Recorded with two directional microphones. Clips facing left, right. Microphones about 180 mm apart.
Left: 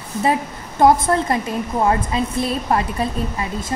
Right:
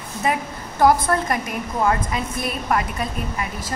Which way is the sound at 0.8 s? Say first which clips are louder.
Left 3 dB; 25° left (ahead or behind).